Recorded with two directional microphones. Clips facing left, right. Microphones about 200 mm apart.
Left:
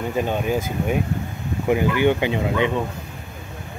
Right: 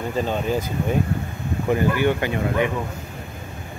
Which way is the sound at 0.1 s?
15° left (ahead or behind).